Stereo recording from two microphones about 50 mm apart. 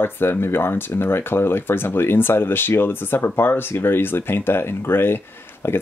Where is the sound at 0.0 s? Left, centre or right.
Left.